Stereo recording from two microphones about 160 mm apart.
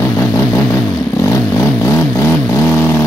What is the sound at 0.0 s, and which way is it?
Vehicle, 15° left (ahead or behind).